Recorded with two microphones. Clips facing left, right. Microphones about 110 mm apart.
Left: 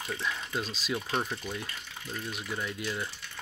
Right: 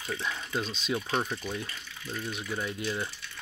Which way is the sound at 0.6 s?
5° left (ahead or behind).